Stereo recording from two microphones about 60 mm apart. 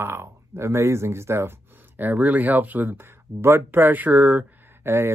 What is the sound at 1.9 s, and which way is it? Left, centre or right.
Speech, right.